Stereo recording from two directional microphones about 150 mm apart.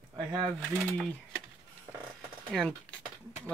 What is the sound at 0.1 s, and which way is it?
Speech, 30° right (ahead or behind).